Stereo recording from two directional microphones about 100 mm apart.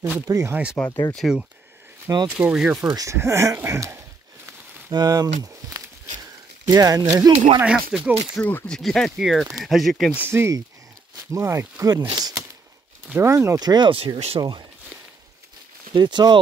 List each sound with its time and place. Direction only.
0.3 s speech: 30° right (ahead or behind)
0.8 s speech: 10° left (ahead or behind)
1.1 s speech: centre (ahead or behind)
2.9 s speech: 35° right (ahead or behind)
4.9 s a sound: 40° right (ahead or behind)
7.6 s speech: 5° right (ahead or behind)
8.4 s speech: 15° left (ahead or behind)
10.1 s speech: 20° right (ahead or behind)
12.0 s a sound: 45° right (ahead or behind)
13.1 s speech: 25° right (ahead or behind)
13.6 s speech: 45° right (ahead or behind)
13.9 s speech: 70° right (ahead or behind)
14.4 s speech: 45° right (ahead or behind)
15.9 s speech: 50° right (ahead or behind)